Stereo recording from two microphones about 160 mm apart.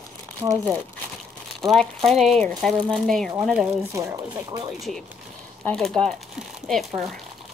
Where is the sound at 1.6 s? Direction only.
Centre (ahead or behind).